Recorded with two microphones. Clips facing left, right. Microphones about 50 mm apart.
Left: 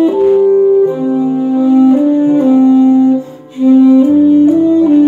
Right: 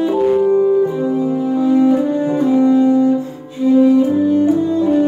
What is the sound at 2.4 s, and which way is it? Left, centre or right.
Music, left.